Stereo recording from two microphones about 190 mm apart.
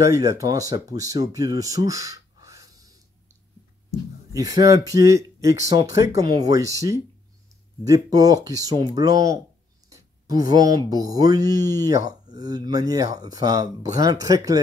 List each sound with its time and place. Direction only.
0.0 s speech: 15° right (ahead or behind)
4.3 s speech: 20° right (ahead or behind)